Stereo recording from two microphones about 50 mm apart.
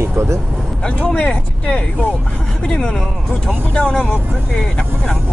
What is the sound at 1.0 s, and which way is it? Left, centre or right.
Speech, left.